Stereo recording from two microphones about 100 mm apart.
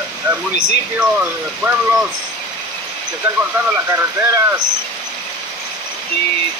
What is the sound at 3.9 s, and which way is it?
Speech, 25° right (ahead or behind).